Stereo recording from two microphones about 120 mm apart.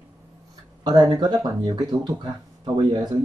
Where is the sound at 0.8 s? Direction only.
35° right (ahead or behind).